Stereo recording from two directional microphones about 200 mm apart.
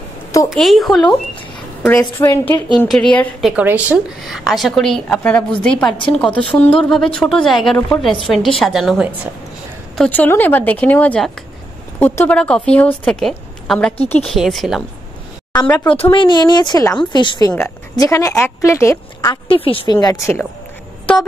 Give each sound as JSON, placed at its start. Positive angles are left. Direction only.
{"t": 0.5, "sound": "a woman's voice", "side_deg": 0}
{"t": 9.9, "sound": "a woman's voice", "side_deg": 5}
{"t": 15.9, "sound": "a woman's voice", "side_deg": 25}
{"t": 17.5, "sound": "speech", "side_deg": 10}
{"t": 19.4, "sound": "a woman's voice", "side_deg": 25}